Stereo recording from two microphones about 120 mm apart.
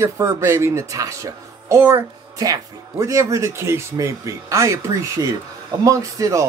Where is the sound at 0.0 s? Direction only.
20° right (ahead or behind).